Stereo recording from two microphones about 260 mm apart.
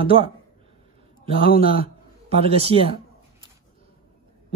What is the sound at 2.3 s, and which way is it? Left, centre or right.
Speech, right.